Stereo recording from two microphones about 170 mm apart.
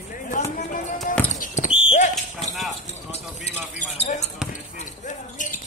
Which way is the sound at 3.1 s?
40° left (ahead or behind).